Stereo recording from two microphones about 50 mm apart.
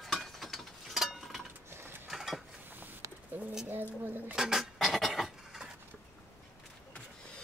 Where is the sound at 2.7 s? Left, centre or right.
Right.